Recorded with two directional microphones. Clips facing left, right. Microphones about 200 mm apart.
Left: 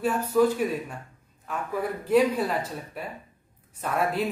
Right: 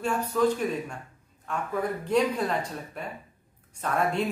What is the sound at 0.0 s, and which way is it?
A man's voice, 5° left (ahead or behind).